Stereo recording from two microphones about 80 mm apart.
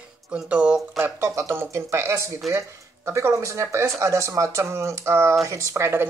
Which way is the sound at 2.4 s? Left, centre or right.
Centre.